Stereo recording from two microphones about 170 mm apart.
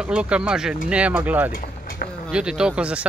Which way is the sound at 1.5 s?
55° left (ahead or behind).